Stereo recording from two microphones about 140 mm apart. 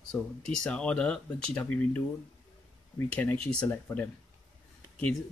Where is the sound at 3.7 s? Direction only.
20° left (ahead or behind).